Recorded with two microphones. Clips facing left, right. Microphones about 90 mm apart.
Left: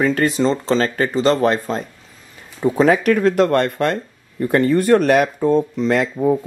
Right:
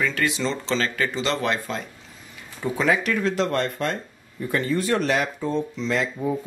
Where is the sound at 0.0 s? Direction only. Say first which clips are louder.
Left 8 dB; 40° left (ahead or behind).